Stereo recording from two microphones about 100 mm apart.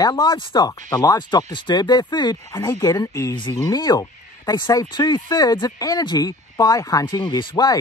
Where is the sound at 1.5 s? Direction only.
45° left (ahead or behind).